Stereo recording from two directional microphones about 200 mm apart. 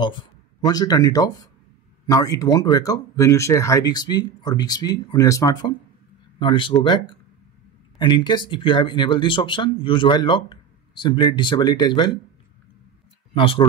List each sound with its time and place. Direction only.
0.0 s speech: 20° left (ahead or behind)
13.3 s speech: 25° left (ahead or behind)